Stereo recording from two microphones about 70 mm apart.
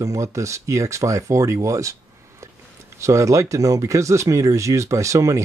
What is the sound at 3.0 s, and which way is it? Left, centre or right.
Speech, right.